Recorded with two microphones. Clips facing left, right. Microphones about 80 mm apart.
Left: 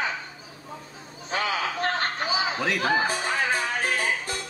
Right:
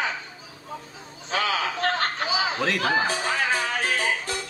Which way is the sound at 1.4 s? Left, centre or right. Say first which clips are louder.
Right 2 dB; centre.